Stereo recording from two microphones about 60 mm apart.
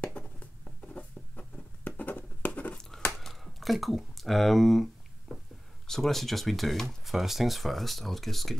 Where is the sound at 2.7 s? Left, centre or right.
Centre.